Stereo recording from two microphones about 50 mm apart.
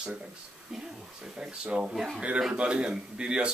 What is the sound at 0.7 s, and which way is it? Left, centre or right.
Speech, centre.